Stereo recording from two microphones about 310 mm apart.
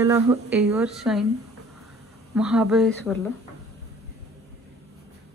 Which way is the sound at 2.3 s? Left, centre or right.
Centre.